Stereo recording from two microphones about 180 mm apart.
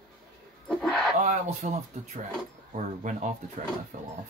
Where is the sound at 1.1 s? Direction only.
40° right (ahead or behind).